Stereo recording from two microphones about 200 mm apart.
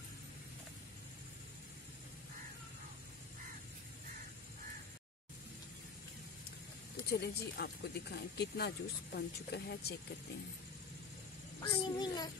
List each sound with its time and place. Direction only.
7.1 s speech: 50° left (ahead or behind)
11.6 s a child's voice: 20° left (ahead or behind)